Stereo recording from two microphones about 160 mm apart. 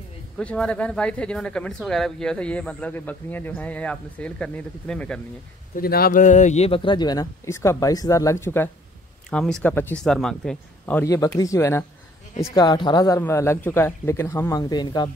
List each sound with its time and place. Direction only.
0.4 s speech: 5° left (ahead or behind)
5.8 s speech: 70° left (ahead or behind); by 8.6 s 15° left (ahead or behind)
9.3 s speech: 5° left (ahead or behind)
11.1 s speech: 20° left (ahead or behind)